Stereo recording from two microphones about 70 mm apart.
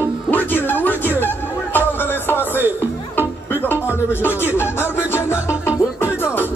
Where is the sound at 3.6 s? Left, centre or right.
Left.